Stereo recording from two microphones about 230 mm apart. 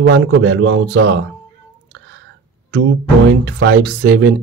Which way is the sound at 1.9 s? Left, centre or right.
Right.